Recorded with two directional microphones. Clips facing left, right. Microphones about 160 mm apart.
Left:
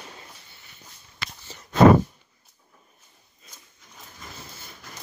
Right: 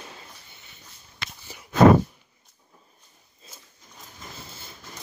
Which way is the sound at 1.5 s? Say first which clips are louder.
Even; 10° right (ahead or behind).